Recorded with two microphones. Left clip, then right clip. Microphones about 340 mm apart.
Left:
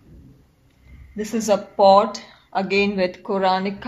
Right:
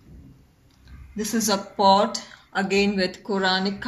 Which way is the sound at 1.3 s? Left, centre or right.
Left.